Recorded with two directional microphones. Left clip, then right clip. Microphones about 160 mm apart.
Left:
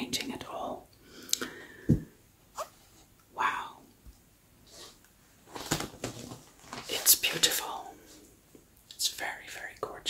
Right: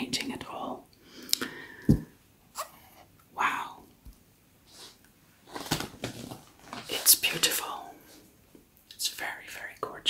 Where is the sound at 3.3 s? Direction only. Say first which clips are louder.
Right 2 dB; 15° right (ahead or behind).